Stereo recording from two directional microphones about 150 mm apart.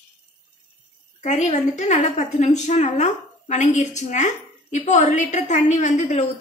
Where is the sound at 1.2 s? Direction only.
50° left (ahead or behind).